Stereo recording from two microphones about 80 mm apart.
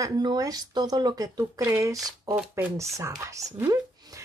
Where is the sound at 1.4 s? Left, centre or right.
Right.